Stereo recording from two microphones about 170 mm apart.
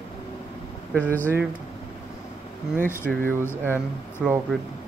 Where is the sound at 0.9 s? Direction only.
10° left (ahead or behind).